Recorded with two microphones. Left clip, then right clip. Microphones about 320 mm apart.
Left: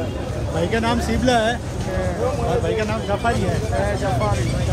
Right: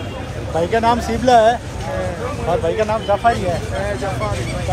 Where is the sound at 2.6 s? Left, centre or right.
Centre.